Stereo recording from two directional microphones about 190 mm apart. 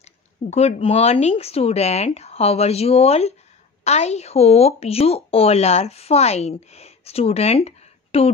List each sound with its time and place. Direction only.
0.5 s speech: 35° left (ahead or behind)